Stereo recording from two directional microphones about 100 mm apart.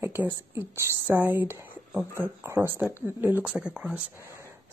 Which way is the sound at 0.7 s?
25° right (ahead or behind).